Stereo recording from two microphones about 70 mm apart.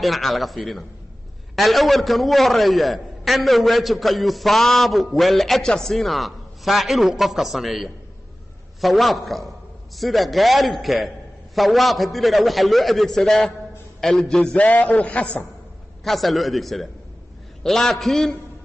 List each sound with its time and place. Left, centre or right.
0.0 s a man's voice: centre
14.7 s a man's voice: left
16.0 s a man's voice: centre